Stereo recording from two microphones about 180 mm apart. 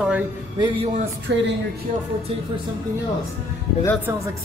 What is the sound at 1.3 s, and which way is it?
Speech, 70° right (ahead or behind).